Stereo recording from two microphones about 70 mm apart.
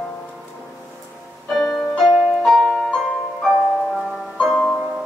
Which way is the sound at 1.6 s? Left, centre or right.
Centre.